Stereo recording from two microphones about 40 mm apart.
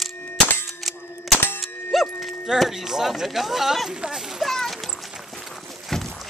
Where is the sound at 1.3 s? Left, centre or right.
Left.